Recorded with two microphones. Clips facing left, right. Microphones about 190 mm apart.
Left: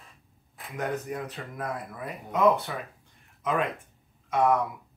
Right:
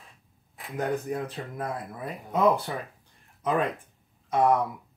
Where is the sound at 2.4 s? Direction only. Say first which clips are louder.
Even; centre (ahead or behind).